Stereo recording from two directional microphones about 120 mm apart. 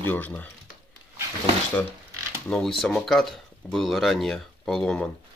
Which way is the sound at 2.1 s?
25° right (ahead or behind).